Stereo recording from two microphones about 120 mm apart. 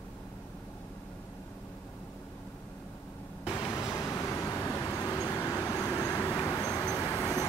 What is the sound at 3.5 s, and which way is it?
Vehicle, 25° left (ahead or behind).